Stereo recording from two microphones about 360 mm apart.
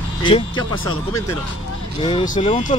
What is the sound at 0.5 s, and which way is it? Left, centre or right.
Speech, left.